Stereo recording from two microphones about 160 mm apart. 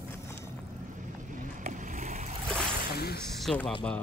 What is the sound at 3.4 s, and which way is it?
Speech, 5° left (ahead or behind).